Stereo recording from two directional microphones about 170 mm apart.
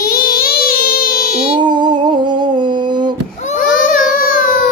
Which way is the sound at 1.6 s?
25° right (ahead or behind).